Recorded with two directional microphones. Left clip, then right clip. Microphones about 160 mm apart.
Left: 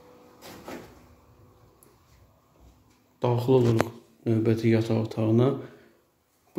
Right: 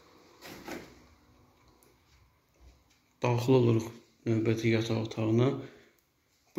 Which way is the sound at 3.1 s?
15° left (ahead or behind).